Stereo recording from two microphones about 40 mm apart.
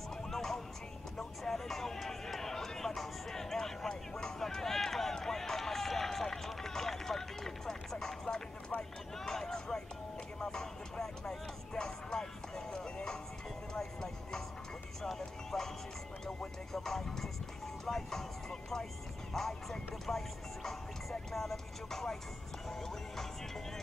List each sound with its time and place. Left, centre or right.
0.1 s music: centre
1.4 s a sound: centre
10.4 s music: centre
16.7 s music: centre
17.8 s vehicle: centre
19.3 s clip-clop: centre
20.1 s music: centre